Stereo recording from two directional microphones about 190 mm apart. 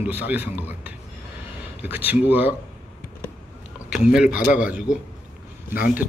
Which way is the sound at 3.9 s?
5° right (ahead or behind).